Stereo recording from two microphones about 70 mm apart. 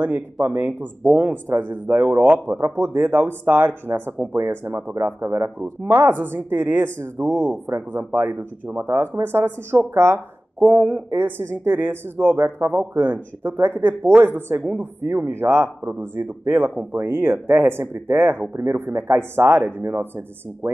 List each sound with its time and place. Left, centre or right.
0.0 s speech: right
5.6 s speech: right
10.7 s speech: right